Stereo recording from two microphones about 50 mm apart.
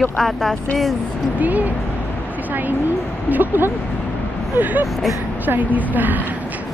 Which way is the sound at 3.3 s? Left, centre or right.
Right.